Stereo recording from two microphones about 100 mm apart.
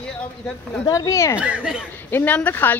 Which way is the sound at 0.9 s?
35° left (ahead or behind).